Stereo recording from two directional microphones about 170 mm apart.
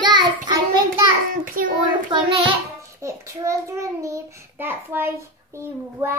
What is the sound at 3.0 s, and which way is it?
A child's voice, 15° right (ahead or behind).